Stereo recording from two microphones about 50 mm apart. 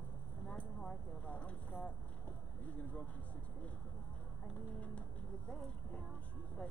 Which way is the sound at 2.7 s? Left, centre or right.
Left.